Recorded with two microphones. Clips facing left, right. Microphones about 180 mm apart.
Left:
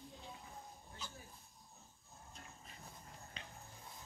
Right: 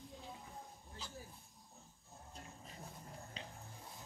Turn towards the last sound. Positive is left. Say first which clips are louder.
# right 4 dB
turn(degrees=-30)  # may be behind; listen again after turning